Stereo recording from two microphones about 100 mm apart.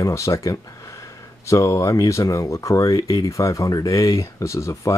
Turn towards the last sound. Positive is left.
turn(degrees=30)  # may be behind; listen again after turning